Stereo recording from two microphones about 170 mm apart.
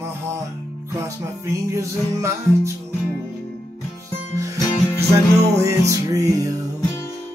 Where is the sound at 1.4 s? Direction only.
15° right (ahead or behind).